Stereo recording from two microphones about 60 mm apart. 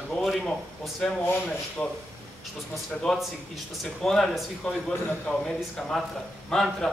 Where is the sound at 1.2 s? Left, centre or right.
Left.